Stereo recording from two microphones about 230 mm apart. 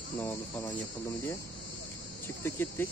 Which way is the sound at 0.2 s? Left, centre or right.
Centre.